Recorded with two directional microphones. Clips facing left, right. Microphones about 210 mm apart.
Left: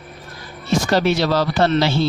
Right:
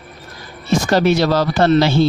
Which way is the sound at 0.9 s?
45° right (ahead or behind).